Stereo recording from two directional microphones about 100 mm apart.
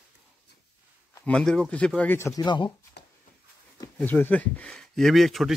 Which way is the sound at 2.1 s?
30° left (ahead or behind).